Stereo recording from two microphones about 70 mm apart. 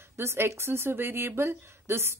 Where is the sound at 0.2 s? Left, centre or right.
Right.